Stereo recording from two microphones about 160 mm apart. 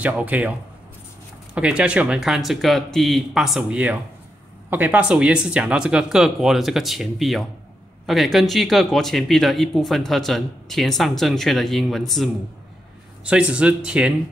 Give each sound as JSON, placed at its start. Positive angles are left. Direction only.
{"t": 0.0, "sound": "speech", "side_deg": -10}